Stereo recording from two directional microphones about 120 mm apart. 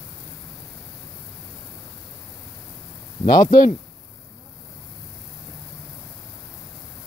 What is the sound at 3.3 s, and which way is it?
Speech, 30° left (ahead or behind).